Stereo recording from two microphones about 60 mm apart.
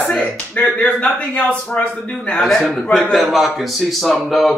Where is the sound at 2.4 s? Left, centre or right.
Centre.